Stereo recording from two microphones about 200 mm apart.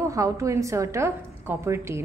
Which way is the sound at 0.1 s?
15° right (ahead or behind).